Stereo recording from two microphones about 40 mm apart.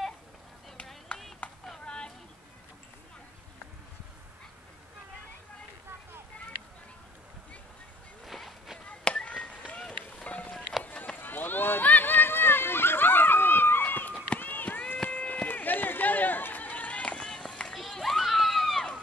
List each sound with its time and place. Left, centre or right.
1.1 s a sound: left
1.9 s vehicle: left
8.3 s a sound: centre
9.0 s a sound: left
9.8 s run: left
11.1 s run: left
13.8 s run: left
17.3 s run: centre
17.7 s children playing: centre